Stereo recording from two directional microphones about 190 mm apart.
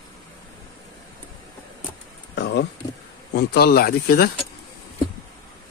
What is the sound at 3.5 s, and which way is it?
Speech, 55° left (ahead or behind).